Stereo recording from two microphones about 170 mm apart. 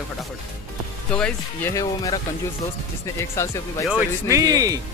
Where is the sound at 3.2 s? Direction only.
15° left (ahead or behind).